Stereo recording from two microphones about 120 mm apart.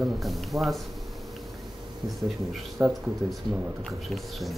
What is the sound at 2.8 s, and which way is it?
Speech, 15° right (ahead or behind).